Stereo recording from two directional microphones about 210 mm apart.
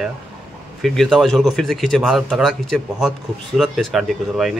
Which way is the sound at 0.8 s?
Centre (ahead or behind).